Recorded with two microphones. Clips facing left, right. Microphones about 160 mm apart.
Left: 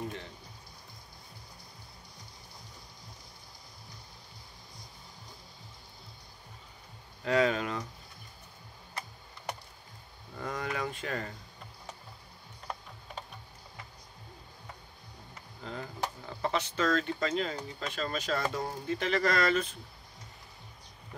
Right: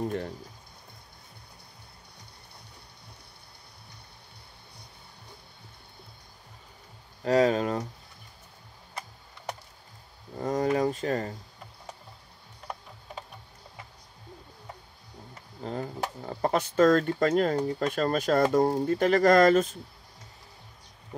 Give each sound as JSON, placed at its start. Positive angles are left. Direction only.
{"t": 0.0, "sound": "speech", "side_deg": -50}
{"t": 7.2, "sound": "speech", "side_deg": -40}
{"t": 10.3, "sound": "speech", "side_deg": -35}
{"t": 15.6, "sound": "speech", "side_deg": -40}